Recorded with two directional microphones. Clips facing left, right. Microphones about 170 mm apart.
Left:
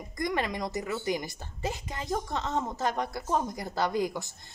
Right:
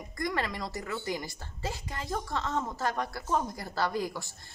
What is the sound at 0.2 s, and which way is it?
A woman's voice, 20° left (ahead or behind).